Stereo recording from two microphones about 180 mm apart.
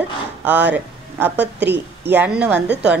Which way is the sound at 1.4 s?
70° right (ahead or behind).